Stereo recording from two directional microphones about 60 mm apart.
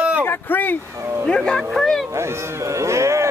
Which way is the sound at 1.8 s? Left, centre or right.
Centre.